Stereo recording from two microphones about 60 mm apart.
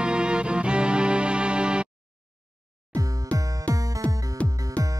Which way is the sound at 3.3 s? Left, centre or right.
Right.